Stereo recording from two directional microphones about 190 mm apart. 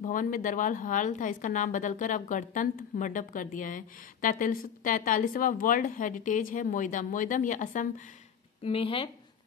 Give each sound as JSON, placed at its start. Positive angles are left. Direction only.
{"t": 0.0, "sound": "a woman's voice", "side_deg": 45}
{"t": 8.6, "sound": "speech", "side_deg": 30}